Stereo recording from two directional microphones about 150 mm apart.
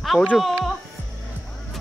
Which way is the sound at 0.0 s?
5° left (ahead or behind).